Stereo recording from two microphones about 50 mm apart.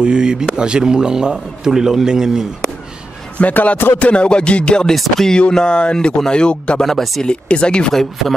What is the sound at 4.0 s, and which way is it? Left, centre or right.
Speech, left.